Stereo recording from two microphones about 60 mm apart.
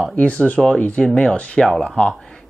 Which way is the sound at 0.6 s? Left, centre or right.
Centre.